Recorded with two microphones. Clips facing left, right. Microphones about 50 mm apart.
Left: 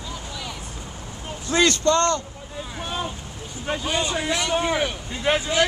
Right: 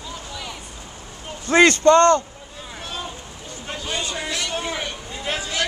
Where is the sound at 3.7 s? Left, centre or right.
Centre.